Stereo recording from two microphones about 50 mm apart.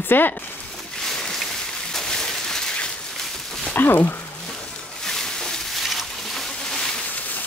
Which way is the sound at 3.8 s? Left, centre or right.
Left.